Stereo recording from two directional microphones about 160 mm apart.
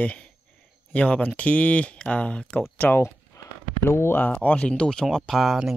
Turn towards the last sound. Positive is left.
turn(degrees=0)  # may be behind; listen again after turning